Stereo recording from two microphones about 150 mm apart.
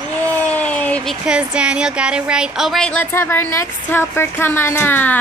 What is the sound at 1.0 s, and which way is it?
A woman's voice, 5° right (ahead or behind).